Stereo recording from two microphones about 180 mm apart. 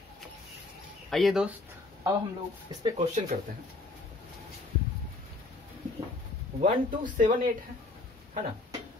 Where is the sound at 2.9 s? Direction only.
40° right (ahead or behind).